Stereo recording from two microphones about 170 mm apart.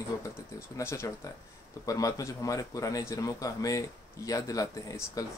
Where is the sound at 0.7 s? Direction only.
15° left (ahead or behind).